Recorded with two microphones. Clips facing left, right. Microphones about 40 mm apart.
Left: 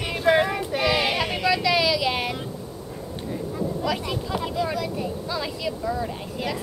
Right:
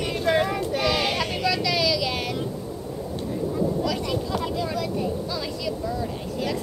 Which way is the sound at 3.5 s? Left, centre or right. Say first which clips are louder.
Right 1 dB; centre.